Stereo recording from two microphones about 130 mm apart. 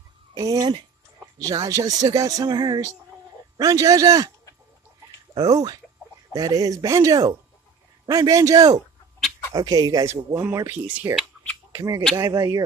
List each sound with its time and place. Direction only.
0.3 s speech: 30° right (ahead or behind)
5.3 s speech: 30° right (ahead or behind)